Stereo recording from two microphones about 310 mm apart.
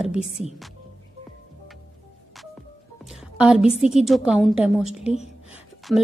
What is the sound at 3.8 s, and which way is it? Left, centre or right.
A woman's voice, centre.